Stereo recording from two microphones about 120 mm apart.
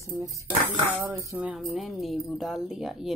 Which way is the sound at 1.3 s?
10° right (ahead or behind).